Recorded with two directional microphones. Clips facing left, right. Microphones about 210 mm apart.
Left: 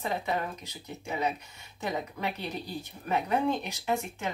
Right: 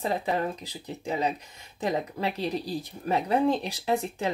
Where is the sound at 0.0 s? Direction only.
35° right (ahead or behind).